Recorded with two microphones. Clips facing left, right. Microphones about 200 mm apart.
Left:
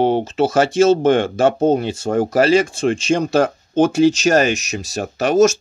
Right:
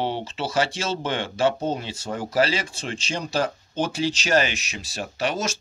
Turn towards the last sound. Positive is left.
turn(degrees=45)  # may be behind; listen again after turning